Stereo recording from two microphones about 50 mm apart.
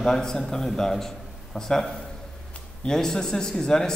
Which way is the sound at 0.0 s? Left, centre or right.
Centre.